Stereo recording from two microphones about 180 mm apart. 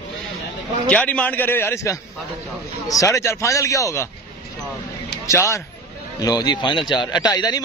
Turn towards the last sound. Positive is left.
turn(degrees=25)  # may be behind; listen again after turning